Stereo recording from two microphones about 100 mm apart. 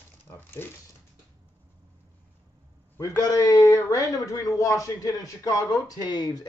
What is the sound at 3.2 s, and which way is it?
Speech, 40° left (ahead or behind).